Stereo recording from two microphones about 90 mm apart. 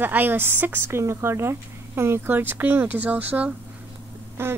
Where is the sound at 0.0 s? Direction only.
20° right (ahead or behind).